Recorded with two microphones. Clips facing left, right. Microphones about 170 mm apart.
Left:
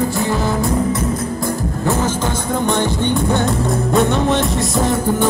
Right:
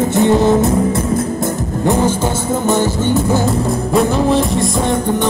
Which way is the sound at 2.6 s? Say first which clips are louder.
Right 3 dB; 5° right (ahead or behind).